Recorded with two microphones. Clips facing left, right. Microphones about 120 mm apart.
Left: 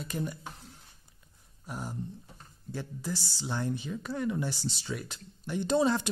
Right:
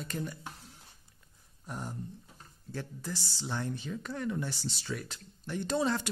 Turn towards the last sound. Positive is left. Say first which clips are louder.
# left 4 dB
turn(degrees=20)  # may be behind; listen again after turning